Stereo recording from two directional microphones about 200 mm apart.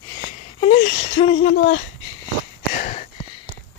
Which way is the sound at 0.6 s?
35° left (ahead or behind).